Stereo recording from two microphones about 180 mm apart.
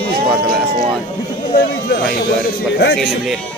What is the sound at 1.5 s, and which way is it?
Speech, 60° left (ahead or behind).